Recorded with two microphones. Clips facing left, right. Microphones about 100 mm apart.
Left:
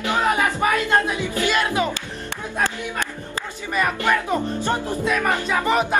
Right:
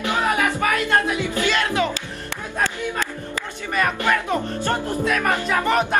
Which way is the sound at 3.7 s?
15° left (ahead or behind).